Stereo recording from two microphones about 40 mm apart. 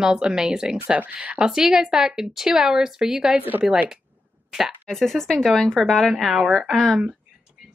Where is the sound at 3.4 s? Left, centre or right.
Right.